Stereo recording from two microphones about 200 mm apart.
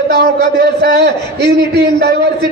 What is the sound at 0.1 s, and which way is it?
A man's voice, 50° right (ahead or behind).